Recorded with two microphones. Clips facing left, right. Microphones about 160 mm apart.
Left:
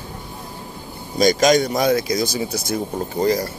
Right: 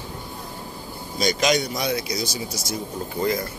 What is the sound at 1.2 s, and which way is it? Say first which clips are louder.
Speech: left 7 dB; 45° left (ahead or behind).